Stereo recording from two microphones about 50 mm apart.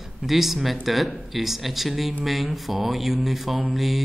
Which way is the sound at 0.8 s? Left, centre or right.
Centre.